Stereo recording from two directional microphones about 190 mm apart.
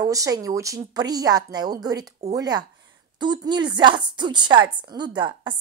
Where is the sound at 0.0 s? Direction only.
20° right (ahead or behind).